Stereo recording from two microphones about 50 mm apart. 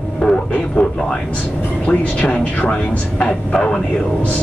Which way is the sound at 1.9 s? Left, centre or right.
Left.